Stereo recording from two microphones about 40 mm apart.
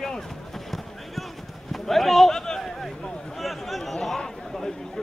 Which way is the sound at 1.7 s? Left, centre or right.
Centre.